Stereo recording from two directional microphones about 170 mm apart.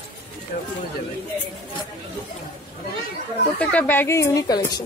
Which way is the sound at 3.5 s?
10° left (ahead or behind).